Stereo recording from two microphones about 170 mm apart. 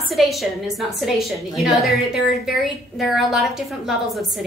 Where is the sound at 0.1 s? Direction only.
Centre (ahead or behind).